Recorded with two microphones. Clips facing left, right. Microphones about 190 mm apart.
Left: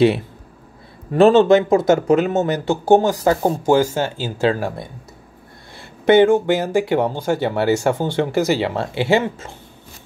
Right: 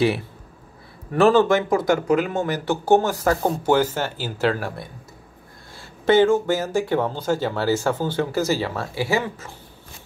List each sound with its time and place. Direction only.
1.1 s speech: 20° left (ahead or behind)
6.0 s speech: 15° left (ahead or behind)